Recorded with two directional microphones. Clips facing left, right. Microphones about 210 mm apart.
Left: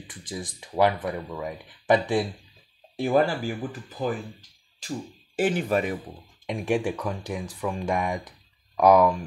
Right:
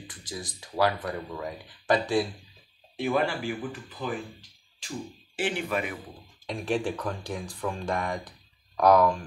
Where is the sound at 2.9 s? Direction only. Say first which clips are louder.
Left 4 dB; 35° left (ahead or behind).